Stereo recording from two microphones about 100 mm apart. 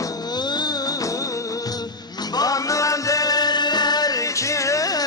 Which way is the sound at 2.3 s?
40° left (ahead or behind).